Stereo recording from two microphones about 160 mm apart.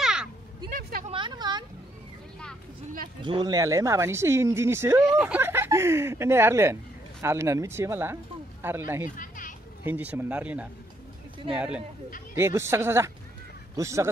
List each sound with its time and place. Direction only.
0.0 s crow: 5° right (ahead or behind)
0.7 s a sound: 60° right (ahead or behind)
1.1 s a sound: 30° right (ahead or behind)
3.3 s speech: 25° right (ahead or behind)
5.0 s speech: 5° right (ahead or behind)
9.1 s children playing: 60° left (ahead or behind)
9.8 s speech: 10° right (ahead or behind)